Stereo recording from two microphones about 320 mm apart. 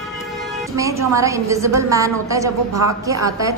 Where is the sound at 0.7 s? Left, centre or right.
Centre.